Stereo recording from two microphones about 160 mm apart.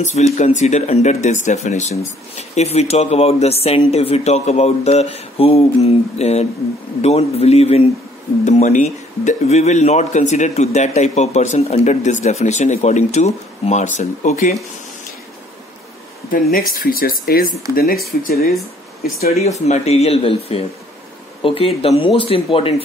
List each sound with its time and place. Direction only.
0.0 s speech: 45° left (ahead or behind)
16.3 s speech: 65° left (ahead or behind)
19.1 s speech: 40° left (ahead or behind)